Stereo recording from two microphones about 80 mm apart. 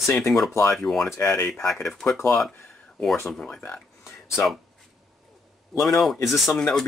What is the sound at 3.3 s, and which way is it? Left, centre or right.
Speech, centre.